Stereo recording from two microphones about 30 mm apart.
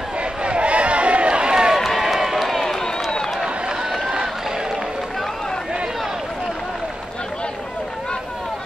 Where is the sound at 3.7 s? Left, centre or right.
Right.